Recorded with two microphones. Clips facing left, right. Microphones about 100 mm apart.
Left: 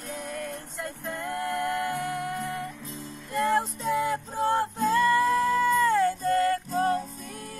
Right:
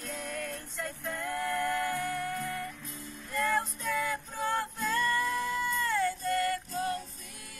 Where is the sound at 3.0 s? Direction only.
20° left (ahead or behind).